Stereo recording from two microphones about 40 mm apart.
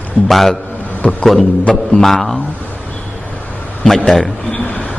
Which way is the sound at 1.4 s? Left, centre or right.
Left.